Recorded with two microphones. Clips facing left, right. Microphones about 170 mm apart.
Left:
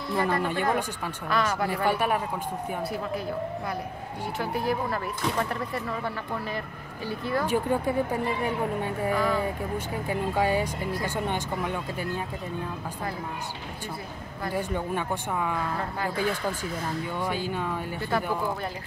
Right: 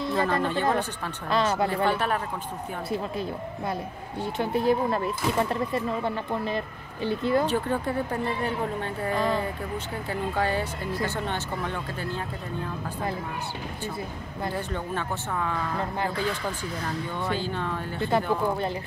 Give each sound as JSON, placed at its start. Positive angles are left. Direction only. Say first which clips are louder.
{"t": 0.0, "sound": "music", "louder": "right 2 dB", "side_deg": -20}
{"t": 0.4, "sound": "a woman's voice", "louder": "right 1 dB", "side_deg": 15}
{"t": 1.3, "sound": "speech", "louder": "right 3 dB", "side_deg": -25}
{"t": 1.9, "sound": "a woman's voice", "louder": "left 1 dB", "side_deg": 10}
{"t": 2.9, "sound": "speech", "louder": "right 1 dB", "side_deg": -25}
{"t": 7.4, "sound": "a woman's voice", "louder": "left 1 dB", "side_deg": 10}
{"t": 9.1, "sound": "speech", "louder": "right 1 dB", "side_deg": -20}
{"t": 10.0, "sound": "a woman's voice", "louder": "left 2 dB", "side_deg": 10}
{"t": 14.5, "sound": "a woman's voice", "louder": "left 4 dB", "side_deg": 10}
{"t": 17.2, "sound": "a woman's voice", "louder": "right 1 dB", "side_deg": 10}
{"t": 18.0, "sound": "speech", "louder": "right 4 dB", "side_deg": -25}